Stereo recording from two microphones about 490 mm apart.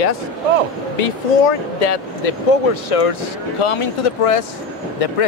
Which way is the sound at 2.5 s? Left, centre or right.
Left.